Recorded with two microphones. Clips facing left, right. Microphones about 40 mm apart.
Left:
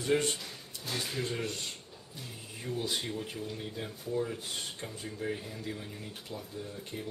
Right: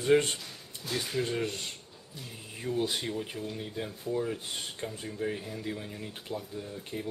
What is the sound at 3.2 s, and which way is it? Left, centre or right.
Speech, centre.